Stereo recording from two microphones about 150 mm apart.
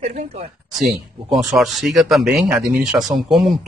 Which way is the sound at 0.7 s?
Centre (ahead or behind).